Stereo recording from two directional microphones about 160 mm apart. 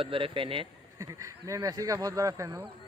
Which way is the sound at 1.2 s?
20° right (ahead or behind).